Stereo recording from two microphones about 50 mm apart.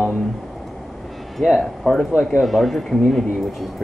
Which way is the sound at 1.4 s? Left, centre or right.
Centre.